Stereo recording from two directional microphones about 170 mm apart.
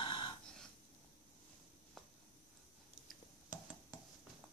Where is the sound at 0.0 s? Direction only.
30° left (ahead or behind).